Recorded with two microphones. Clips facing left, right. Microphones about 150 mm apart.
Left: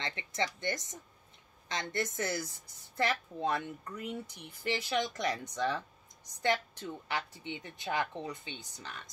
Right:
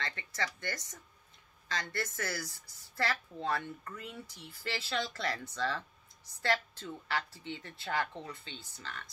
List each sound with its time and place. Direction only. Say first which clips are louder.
0.0 s a woman's voice: left 3 dB; 20° left (ahead or behind)